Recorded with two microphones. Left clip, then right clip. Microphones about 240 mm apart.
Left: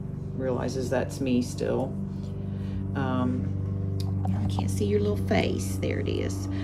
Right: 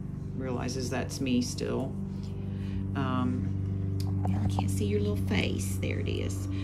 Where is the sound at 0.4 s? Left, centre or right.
Centre.